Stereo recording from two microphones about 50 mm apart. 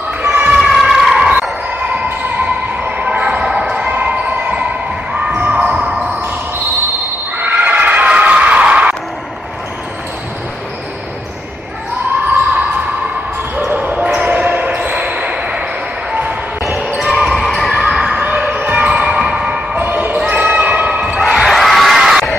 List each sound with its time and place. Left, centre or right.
0.2 s a sound: right
0.6 s a sound: centre
2.4 s a sound: right
3.7 s basketball bounce: right
7.3 s neigh: right
13.7 s basketball bounce: right
16.6 s basketball bounce: centre
17.3 s basketball bounce: centre
17.6 s basketball bounce: centre
17.9 s basketball bounce: centre; by 18.9 s right
18.9 s a sound: centre
19.8 s basketball bounce: right
21.2 s crowd: centre